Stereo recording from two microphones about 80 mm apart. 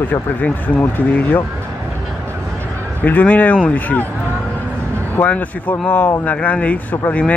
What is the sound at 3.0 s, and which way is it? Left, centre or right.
Speech, left.